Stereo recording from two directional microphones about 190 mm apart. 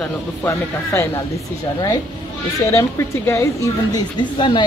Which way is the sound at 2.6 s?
15° left (ahead or behind).